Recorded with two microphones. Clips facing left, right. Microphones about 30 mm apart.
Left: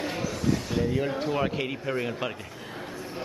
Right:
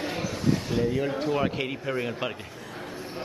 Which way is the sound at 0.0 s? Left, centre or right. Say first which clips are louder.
Right 1 dB; centre.